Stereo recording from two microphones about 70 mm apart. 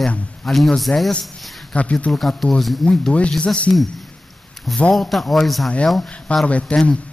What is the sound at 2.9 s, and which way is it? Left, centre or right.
Speech, centre.